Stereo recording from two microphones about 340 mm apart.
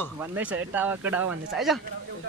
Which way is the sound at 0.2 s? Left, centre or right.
Centre.